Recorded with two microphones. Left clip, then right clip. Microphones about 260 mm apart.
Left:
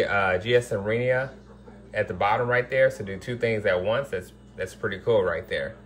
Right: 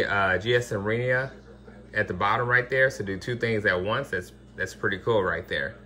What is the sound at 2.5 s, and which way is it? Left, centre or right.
Speech, centre.